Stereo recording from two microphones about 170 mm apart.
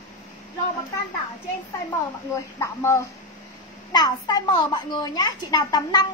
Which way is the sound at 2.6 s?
15° left (ahead or behind).